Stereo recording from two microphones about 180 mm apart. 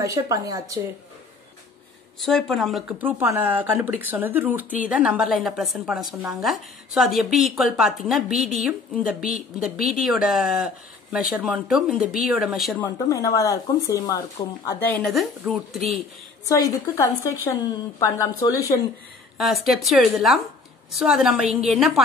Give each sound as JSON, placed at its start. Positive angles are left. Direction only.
{"t": 0.0, "sound": "speech", "side_deg": -20}
{"t": 2.1, "sound": "speech", "side_deg": 0}
{"t": 10.0, "sound": "speech", "side_deg": 0}
{"t": 12.8, "sound": "speech", "side_deg": 20}
{"t": 16.4, "sound": "a woman's voice", "side_deg": 20}
{"t": 19.3, "sound": "speech", "side_deg": 0}